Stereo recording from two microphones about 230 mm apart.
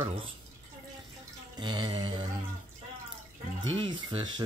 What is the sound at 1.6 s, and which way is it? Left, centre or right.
Speech, centre.